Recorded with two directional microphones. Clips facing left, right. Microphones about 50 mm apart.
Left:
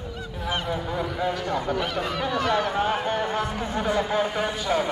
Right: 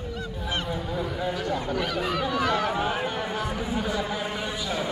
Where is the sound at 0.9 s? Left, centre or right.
Left.